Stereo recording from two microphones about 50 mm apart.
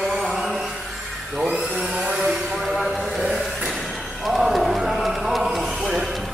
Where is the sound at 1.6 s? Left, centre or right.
Centre.